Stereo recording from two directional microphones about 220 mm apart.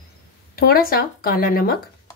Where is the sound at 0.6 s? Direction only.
45° left (ahead or behind).